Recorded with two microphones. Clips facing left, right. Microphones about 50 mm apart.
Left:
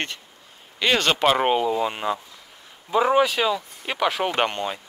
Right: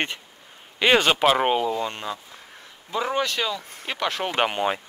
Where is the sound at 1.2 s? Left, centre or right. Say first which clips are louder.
Even; centre.